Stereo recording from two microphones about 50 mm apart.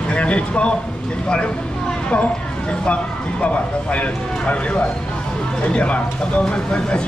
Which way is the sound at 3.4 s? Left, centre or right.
Left.